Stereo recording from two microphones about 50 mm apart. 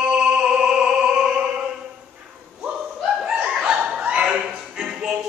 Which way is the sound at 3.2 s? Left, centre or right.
Centre.